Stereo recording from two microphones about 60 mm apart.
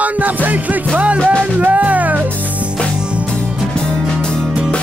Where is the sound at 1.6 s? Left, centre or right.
Right.